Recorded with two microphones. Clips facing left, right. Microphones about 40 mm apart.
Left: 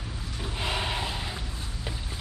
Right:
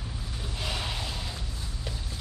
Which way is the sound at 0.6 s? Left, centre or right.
Left.